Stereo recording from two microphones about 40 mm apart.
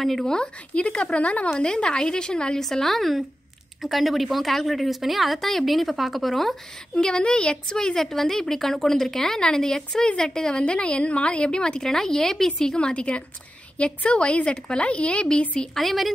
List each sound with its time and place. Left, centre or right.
0.0 s a woman's voice: centre
0.7 s a woman's voice: left
2.6 s a woman's voice: centre
7.0 s speech: centre
10.6 s a woman's voice: left
15.7 s a woman's voice: centre